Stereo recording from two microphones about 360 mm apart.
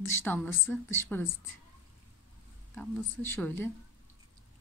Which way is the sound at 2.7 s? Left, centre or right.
Centre.